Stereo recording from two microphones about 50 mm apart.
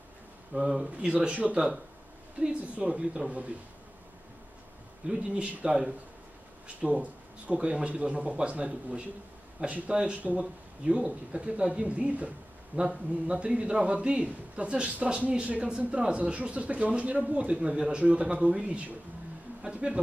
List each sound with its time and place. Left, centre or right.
0.5 s speech: centre
1.1 s speech: right
5.0 s speech: centre
12.7 s speech: right
13.3 s speech: right
19.6 s a sound: centre